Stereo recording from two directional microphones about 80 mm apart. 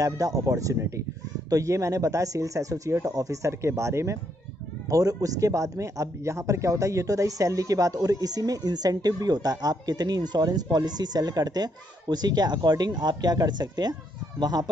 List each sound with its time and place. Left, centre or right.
0.5 s speech: right